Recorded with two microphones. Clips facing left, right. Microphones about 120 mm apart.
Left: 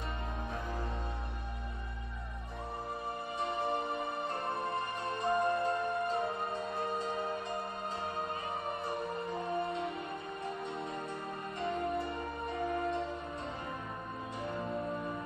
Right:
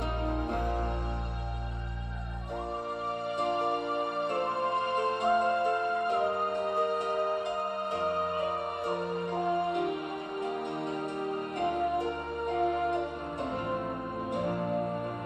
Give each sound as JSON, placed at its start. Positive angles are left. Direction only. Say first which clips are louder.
{"t": 3.3, "sound": "music", "louder": "right 4 dB", "side_deg": -65}
{"t": 11.6, "sound": "music", "louder": "right 5 dB", "side_deg": -65}
{"t": 14.3, "sound": "music", "louder": "right 7 dB", "side_deg": -65}